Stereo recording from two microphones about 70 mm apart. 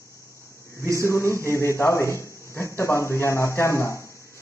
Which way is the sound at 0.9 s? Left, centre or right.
Left.